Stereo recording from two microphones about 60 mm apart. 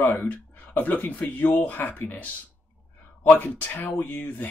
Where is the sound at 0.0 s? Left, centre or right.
Left.